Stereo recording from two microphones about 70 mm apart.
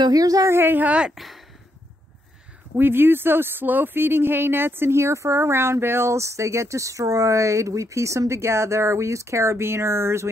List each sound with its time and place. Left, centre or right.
0.0 s a woman's voice: right
0.5 s speech: right
1.1 s a sound: centre
2.7 s speech: right